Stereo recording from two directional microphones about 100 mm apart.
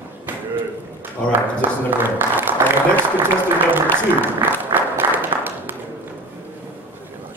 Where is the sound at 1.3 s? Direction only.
20° right (ahead or behind).